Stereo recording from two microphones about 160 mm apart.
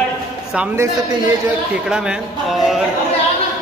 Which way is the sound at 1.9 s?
5° right (ahead or behind).